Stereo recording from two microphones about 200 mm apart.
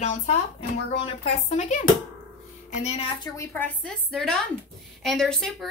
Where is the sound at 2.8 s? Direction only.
25° left (ahead or behind).